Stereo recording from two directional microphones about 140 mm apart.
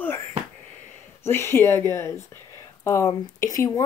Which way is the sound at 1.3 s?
15° left (ahead or behind).